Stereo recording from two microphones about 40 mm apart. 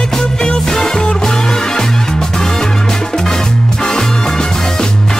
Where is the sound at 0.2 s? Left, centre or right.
Centre.